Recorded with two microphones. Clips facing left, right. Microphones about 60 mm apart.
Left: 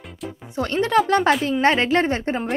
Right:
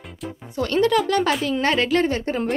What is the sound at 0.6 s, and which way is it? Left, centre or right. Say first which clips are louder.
A woman's voice: even; left.